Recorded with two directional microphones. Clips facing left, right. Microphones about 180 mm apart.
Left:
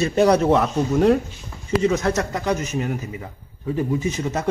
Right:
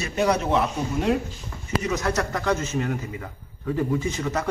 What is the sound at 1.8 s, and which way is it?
Speech, 25° left (ahead or behind).